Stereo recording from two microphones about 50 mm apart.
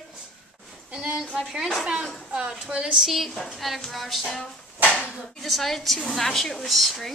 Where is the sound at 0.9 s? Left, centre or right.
Right.